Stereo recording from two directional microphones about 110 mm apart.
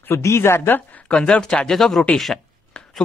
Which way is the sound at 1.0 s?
10° left (ahead or behind).